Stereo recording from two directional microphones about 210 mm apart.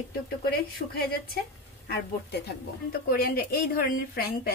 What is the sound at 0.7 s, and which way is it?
Speech, 45° left (ahead or behind).